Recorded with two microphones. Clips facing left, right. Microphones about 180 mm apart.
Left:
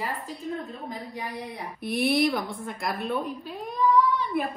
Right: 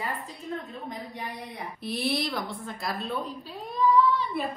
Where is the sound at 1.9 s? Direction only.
20° left (ahead or behind).